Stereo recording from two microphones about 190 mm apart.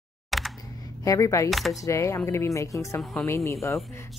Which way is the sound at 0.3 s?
Centre (ahead or behind).